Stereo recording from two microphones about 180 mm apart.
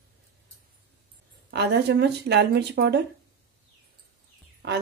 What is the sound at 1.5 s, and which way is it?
Speech, 70° right (ahead or behind).